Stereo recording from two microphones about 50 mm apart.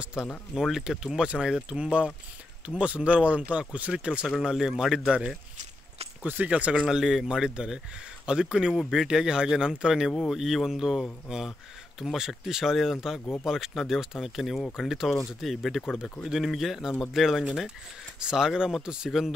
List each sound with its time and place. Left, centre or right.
0.0 s speech: centre
0.6 s speech: centre
4.3 s speech: centre
6.2 s speech: right
6.5 s speech: right
6.9 s speech: centre
17.5 s speech: centre